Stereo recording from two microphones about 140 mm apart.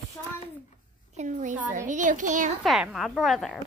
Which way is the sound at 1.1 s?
65° right (ahead or behind).